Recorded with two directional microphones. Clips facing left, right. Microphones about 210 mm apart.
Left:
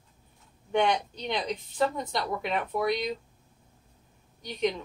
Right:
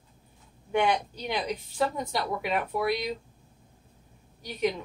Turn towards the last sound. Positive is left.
turn(degrees=-5)  # may be behind; listen again after turning